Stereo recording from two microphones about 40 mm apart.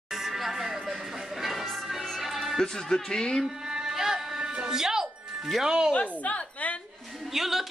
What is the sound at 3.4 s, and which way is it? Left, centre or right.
Music, centre.